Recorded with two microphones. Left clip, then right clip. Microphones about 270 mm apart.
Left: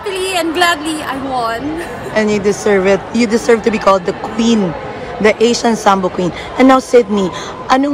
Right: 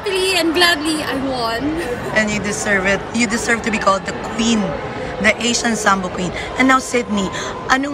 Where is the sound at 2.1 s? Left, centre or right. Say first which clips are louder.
Left 6 dB; left.